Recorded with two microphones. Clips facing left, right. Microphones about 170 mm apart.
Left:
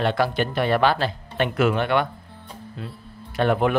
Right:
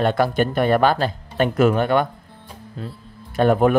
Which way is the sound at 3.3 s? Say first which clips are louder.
Right 4 dB; 45° right (ahead or behind).